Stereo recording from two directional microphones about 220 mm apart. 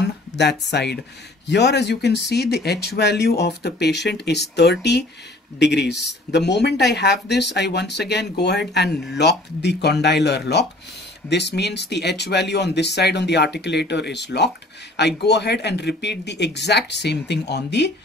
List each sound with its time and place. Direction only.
0.4 s speech: 50° left (ahead or behind)